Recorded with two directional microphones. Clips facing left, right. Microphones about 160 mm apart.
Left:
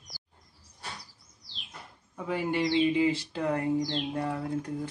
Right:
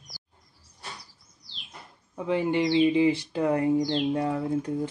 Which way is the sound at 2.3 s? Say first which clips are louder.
Right 4 dB; 20° right (ahead or behind).